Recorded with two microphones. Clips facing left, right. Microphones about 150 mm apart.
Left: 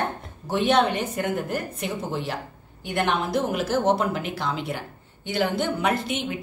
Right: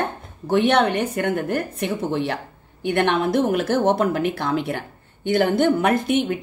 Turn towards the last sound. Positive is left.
turn(degrees=-55)  # may be behind; listen again after turning